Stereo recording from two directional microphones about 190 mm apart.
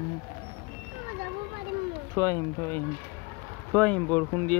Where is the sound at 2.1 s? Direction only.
15° left (ahead or behind).